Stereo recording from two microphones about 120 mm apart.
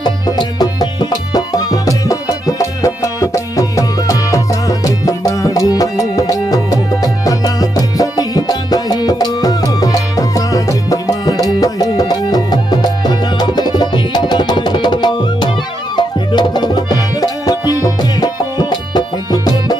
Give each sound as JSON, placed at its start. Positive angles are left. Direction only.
{"t": 0.0, "sound": "music", "side_deg": 35}